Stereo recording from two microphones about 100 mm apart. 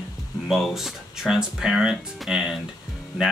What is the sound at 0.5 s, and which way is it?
Speech, centre (ahead or behind).